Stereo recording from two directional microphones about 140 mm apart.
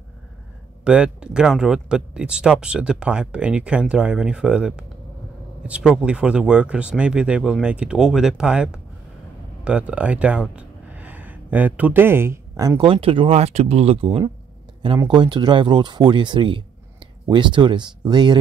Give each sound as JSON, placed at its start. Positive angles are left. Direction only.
{"t": 0.8, "sound": "speech", "side_deg": -5}
{"t": 15.0, "sound": "speech", "side_deg": -30}